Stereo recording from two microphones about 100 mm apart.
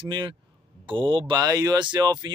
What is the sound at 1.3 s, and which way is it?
Speech, 40° right (ahead or behind).